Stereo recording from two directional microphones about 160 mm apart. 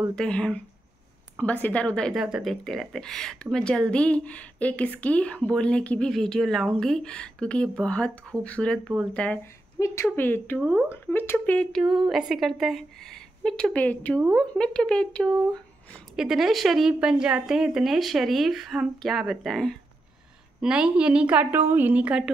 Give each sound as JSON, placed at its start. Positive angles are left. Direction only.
{"t": 0.1, "sound": "speech", "side_deg": 5}
{"t": 9.8, "sound": "speech", "side_deg": 20}
{"t": 10.6, "sound": "speech", "side_deg": -5}
{"t": 10.9, "sound": "a woman's voice", "side_deg": 15}